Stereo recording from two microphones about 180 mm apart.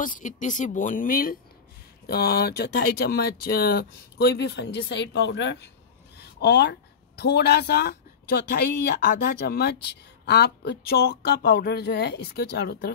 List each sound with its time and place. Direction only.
0.0 s speech: 45° left (ahead or behind)
2.0 s speech: 60° left (ahead or behind); by 5.7 s 80° left
6.1 s speech: 70° left (ahead or behind)